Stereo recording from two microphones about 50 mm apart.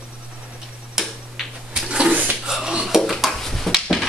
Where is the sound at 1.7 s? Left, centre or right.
Centre.